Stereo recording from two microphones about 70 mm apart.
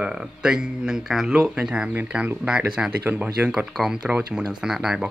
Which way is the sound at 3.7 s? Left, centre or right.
Centre.